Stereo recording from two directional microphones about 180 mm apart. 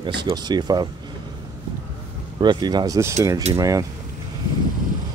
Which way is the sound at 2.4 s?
25° right (ahead or behind).